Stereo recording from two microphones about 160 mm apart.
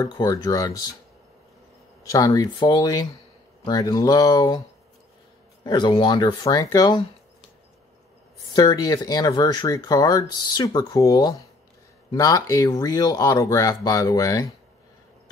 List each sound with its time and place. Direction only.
0.0 s speech: 25° left (ahead or behind)
2.0 s speech: 20° left (ahead or behind)
5.6 s speech: 25° left (ahead or behind)
8.5 s speech: 20° left (ahead or behind)